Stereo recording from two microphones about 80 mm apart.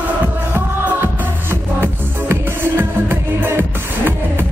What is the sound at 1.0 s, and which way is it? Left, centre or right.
Music, right.